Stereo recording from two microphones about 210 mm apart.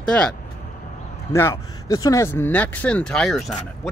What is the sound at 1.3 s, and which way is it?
Speech, 15° left (ahead or behind).